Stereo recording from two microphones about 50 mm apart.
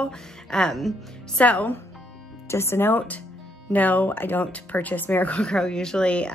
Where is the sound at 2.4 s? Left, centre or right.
Left.